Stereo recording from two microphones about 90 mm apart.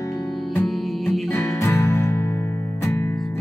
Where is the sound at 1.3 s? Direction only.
30° left (ahead or behind).